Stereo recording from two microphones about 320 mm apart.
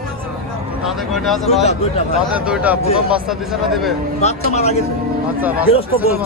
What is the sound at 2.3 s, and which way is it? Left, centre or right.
Speech, centre.